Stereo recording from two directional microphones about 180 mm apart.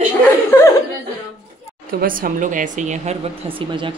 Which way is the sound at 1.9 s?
50° right (ahead or behind).